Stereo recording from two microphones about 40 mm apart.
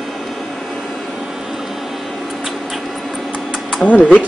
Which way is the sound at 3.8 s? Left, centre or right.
Left.